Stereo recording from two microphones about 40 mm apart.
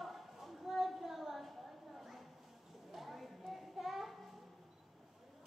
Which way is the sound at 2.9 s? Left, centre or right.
Centre.